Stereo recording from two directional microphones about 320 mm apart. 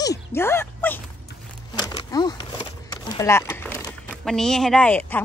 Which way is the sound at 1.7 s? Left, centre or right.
Centre.